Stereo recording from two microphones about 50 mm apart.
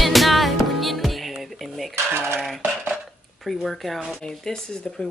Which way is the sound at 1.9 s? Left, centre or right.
Right.